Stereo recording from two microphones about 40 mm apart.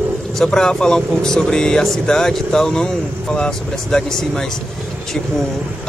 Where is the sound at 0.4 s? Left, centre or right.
Centre.